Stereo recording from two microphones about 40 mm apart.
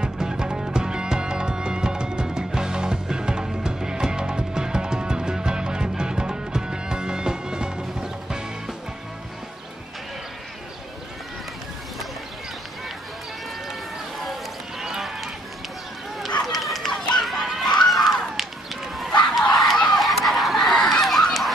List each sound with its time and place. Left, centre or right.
0.0 s music: centre
13.7 s run: centre
14.8 s a sound: centre
16.5 s run: centre
17.2 s a sound: centre
17.7 s run: centre
20.0 s goose: centre